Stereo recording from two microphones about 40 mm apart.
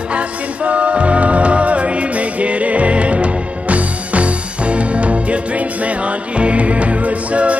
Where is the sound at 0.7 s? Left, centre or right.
Right.